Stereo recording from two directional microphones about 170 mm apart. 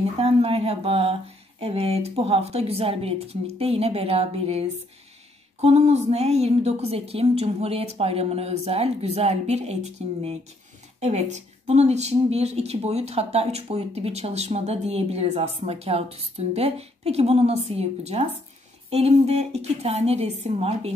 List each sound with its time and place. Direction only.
0.2 s a woman's voice: 35° right (ahead or behind)